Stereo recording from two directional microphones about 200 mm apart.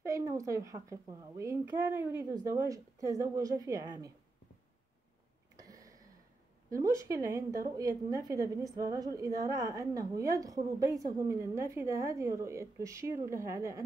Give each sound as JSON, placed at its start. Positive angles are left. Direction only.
{"t": 0.0, "sound": "a woman's voice", "side_deg": -15}
{"t": 5.6, "sound": "a sound", "side_deg": -15}
{"t": 6.7, "sound": "a woman's voice", "side_deg": -15}